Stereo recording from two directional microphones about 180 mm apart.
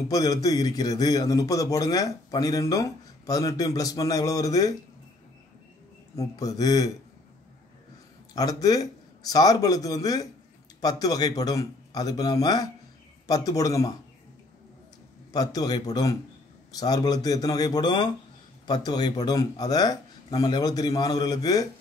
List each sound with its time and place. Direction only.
0.1 s a man's voice: 20° left (ahead or behind)
6.1 s a man's voice: 20° left (ahead or behind)
8.4 s a man's voice: 20° left (ahead or behind)
15.3 s a man's voice: 20° left (ahead or behind)